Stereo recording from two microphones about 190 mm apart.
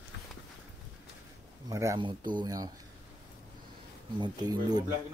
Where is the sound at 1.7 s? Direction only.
20° right (ahead or behind).